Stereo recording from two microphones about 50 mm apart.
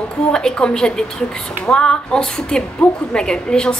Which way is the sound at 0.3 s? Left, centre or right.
Centre.